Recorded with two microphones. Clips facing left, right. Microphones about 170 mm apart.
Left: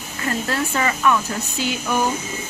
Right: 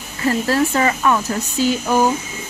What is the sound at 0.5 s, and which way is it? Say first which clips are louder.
Speech: right 5 dB; 35° right (ahead or behind).